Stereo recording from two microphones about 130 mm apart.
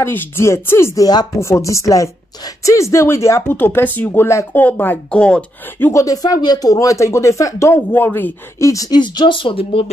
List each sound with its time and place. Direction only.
0.0 s speech: 20° left (ahead or behind)
5.9 s speech: 25° left (ahead or behind); by 9.8 s 45° left (ahead or behind)